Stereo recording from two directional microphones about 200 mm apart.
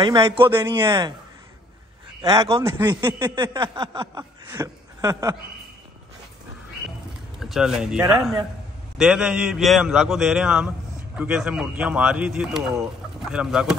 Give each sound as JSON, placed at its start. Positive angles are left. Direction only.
{"t": 0.0, "sound": "speech", "side_deg": -20}
{"t": 2.2, "sound": "speech", "side_deg": -15}
{"t": 7.3, "sound": "speech", "side_deg": 0}